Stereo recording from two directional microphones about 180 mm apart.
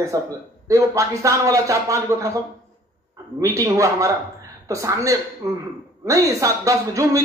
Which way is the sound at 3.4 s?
15° right (ahead or behind).